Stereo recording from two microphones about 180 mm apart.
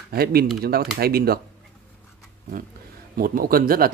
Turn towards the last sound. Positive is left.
turn(degrees=-55)  # may be behind; listen again after turning